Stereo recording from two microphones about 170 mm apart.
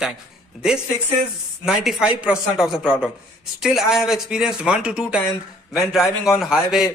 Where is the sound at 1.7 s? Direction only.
5° right (ahead or behind).